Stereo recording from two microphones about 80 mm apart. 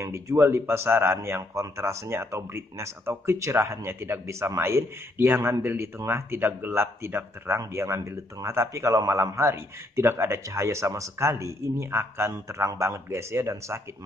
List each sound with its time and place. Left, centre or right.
0.0 s speech: right